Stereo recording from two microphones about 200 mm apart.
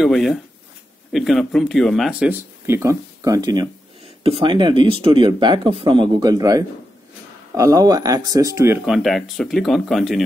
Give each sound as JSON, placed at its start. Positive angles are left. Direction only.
{"t": 0.0, "sound": "speech", "side_deg": 0}
{"t": 8.8, "sound": "speech", "side_deg": 0}